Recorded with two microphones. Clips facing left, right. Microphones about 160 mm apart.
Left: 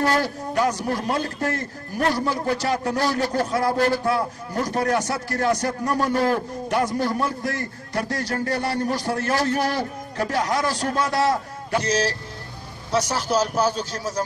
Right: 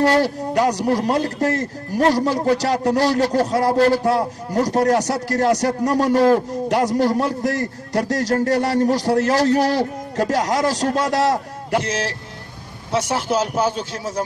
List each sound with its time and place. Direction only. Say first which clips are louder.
0.0 s a man's voice: right 5 dB; 35° right (ahead or behind)
11.9 s a man's voice: left 2 dB; 25° right (ahead or behind)